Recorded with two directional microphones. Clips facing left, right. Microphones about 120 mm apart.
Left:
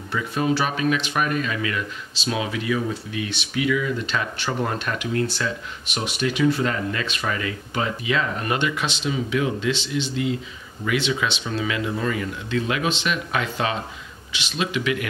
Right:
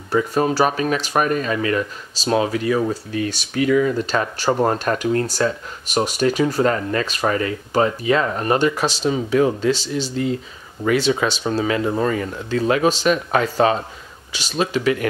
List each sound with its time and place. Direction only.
0.1 s speech: 40° right (ahead or behind)